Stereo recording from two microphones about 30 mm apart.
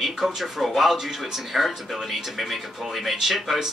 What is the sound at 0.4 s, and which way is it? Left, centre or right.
A man's voice, centre.